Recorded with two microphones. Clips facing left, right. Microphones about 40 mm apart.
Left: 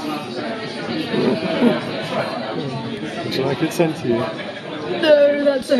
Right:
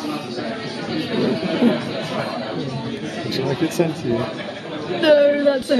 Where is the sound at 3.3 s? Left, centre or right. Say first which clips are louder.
Left 1 dB; centre.